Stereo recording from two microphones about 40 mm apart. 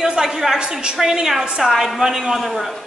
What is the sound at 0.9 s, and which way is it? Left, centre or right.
A woman's voice, centre.